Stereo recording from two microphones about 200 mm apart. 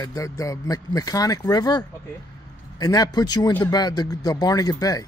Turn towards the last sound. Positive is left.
turn(degrees=20)  # may be behind; listen again after turning